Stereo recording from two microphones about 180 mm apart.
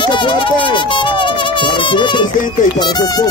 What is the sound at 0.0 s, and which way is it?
Music, 25° left (ahead or behind).